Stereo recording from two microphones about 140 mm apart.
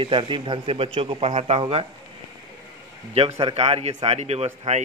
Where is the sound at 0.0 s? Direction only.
35° right (ahead or behind).